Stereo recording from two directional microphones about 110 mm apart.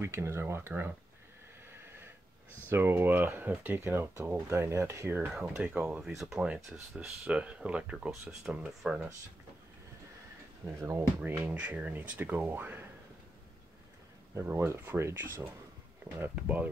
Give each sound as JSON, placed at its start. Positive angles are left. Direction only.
{"t": 0.0, "sound": "speech", "side_deg": -25}
{"t": 2.7, "sound": "speech", "side_deg": -20}
{"t": 11.1, "sound": "speech", "side_deg": -15}
{"t": 14.3, "sound": "speech", "side_deg": -20}